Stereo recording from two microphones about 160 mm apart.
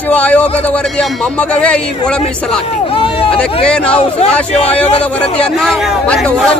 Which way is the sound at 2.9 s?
35° left (ahead or behind).